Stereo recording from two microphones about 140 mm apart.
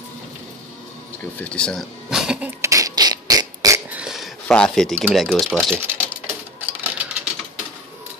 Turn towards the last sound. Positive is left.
turn(degrees=-15)  # may be behind; listen again after turning